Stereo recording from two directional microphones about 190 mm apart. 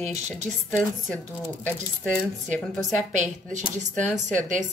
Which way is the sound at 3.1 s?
40° right (ahead or behind).